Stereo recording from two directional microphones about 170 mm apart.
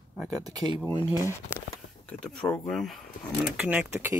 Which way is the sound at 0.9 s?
20° left (ahead or behind).